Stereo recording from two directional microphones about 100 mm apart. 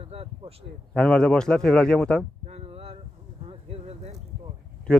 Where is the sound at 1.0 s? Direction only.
5° left (ahead or behind).